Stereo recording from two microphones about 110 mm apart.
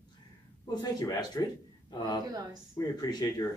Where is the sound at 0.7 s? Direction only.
40° left (ahead or behind).